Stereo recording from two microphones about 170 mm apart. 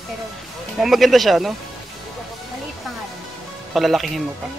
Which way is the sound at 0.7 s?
Centre (ahead or behind).